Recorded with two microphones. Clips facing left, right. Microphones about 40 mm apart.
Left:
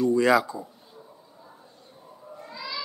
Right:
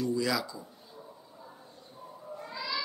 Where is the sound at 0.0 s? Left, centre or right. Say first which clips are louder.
Left 10 dB; left.